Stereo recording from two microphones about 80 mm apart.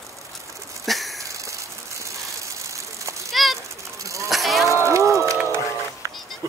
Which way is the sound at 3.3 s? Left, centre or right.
Centre.